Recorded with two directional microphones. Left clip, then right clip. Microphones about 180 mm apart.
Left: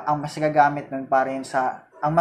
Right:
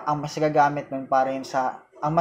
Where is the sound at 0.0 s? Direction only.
20° right (ahead or behind).